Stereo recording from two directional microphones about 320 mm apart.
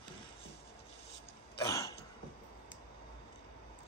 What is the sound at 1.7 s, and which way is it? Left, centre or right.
Throat clearing, centre.